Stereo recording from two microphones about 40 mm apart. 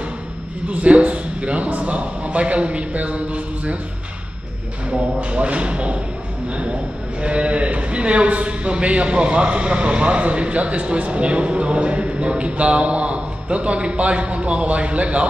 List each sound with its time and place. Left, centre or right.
0.7 s a man's voice: right
4.9 s a man's voice: right